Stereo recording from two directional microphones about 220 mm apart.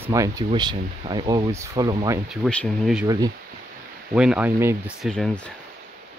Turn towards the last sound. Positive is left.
turn(degrees=0)  # may be behind; listen again after turning